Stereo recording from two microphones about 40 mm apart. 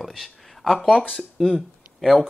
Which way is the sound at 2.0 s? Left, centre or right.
Centre.